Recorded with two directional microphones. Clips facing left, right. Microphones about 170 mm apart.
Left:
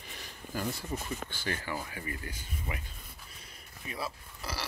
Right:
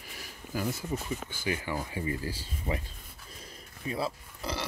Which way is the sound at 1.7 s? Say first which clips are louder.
Right 5 dB; 25° right (ahead or behind).